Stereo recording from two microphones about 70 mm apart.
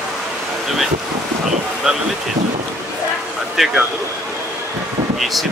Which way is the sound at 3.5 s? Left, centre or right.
Centre.